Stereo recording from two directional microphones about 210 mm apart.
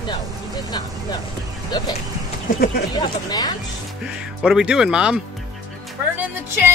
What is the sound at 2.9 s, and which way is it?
Speech, 20° left (ahead or behind).